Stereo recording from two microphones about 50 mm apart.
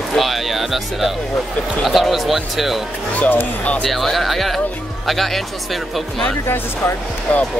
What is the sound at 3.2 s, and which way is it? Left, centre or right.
Speech, left.